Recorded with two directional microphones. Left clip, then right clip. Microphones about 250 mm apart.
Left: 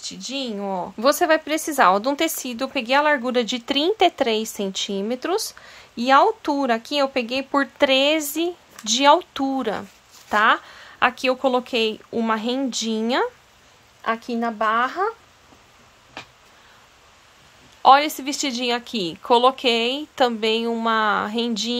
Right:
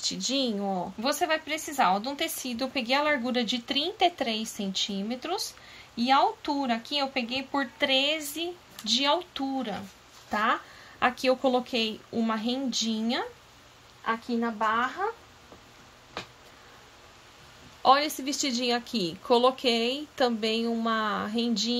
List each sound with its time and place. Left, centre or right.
0.0 s speech: centre
1.0 s a woman's voice: centre
14.4 s speech: left
17.8 s a woman's voice: centre